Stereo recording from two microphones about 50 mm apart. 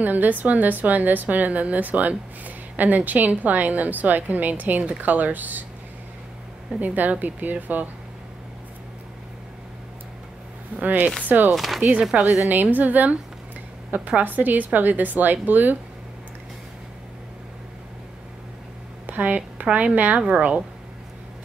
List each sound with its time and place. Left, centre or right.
0.0 s a woman's voice: right
6.8 s a woman's voice: right
10.8 s a woman's voice: right
11.5 s speech: centre
11.8 s speech: right
12.4 s a woman's voice: right
19.0 s speech: right